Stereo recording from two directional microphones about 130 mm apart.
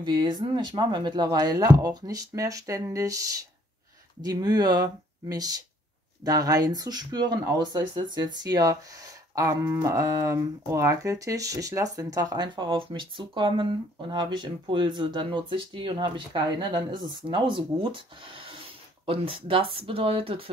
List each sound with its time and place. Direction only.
0.0 s speech: 35° right (ahead or behind)